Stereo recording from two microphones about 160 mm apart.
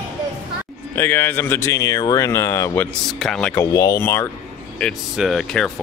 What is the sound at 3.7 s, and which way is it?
Speech, 20° left (ahead or behind).